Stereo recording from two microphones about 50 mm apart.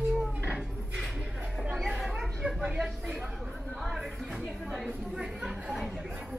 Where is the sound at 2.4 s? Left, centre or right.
Right.